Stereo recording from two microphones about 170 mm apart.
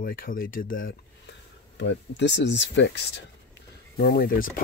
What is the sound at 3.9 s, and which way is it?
Speech, 60° left (ahead or behind).